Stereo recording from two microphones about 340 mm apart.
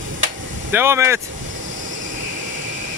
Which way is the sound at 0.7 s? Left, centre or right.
Centre.